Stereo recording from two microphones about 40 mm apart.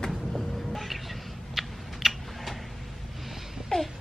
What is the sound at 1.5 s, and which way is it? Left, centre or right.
Tick-tock, centre.